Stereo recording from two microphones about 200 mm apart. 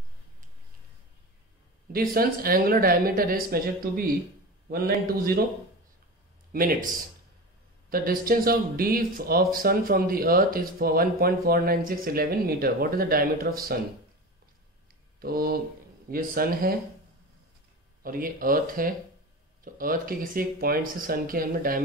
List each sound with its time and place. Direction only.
1.9 s speech: 50° right (ahead or behind)
6.5 s speech: 45° right (ahead or behind)
15.1 s speech: 50° right (ahead or behind)
18.0 s speech: 45° right (ahead or behind)